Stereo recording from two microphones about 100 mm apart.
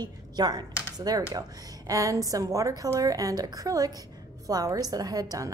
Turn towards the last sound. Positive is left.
turn(degrees=-35)  # may be behind; listen again after turning